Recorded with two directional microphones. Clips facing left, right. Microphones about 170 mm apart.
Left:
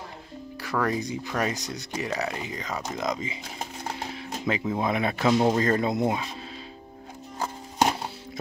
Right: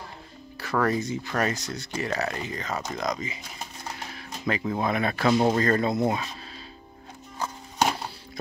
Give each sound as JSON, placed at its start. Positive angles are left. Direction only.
{"t": 0.8, "sound": "speech", "side_deg": 15}
{"t": 3.0, "sound": "speech", "side_deg": 25}
{"t": 4.1, "sound": "a sound", "side_deg": 20}
{"t": 4.6, "sound": "speech", "side_deg": 15}
{"t": 5.4, "sound": "speech", "side_deg": 5}